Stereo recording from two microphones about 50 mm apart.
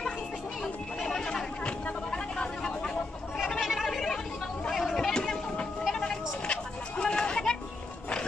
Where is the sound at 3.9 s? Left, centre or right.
Centre.